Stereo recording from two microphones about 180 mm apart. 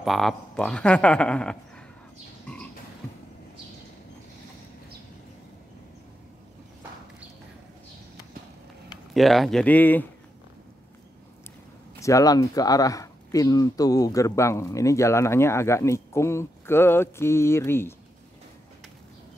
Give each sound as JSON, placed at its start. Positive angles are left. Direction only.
{"t": 0.0, "sound": "speech", "side_deg": 0}
{"t": 2.4, "sound": "a sound", "side_deg": 5}
{"t": 9.1, "sound": "speech", "side_deg": 0}
{"t": 12.0, "sound": "speech", "side_deg": 20}